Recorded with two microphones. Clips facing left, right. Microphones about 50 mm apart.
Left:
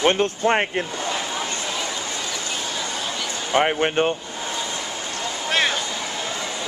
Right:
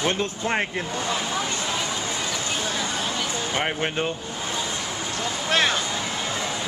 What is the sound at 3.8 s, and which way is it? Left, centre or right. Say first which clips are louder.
Speech: left 5 dB; left.